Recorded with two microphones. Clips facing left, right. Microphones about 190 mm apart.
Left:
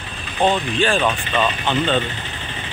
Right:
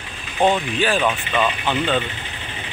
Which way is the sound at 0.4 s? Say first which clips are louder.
Even; 10° right (ahead or behind).